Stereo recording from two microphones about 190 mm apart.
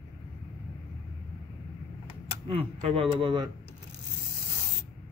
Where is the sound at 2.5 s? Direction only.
30° right (ahead or behind).